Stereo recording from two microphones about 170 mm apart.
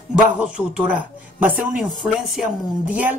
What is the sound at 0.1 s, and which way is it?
Speech, 5° right (ahead or behind).